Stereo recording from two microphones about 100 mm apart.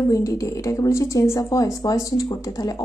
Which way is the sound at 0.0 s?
35° left (ahead or behind).